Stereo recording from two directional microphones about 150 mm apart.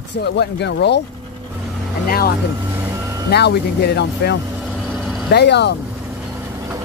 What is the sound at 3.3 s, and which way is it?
Speech, 90° left.